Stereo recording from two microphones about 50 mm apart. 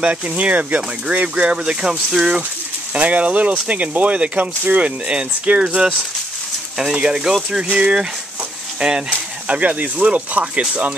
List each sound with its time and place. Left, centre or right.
0.0 s speech: right
2.9 s speech: right
9.5 s speech: right